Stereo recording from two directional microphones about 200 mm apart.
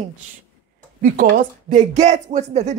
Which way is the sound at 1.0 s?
45° right (ahead or behind).